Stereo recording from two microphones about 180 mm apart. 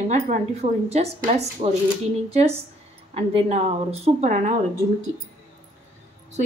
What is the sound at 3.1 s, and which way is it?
Speech, 35° right (ahead or behind).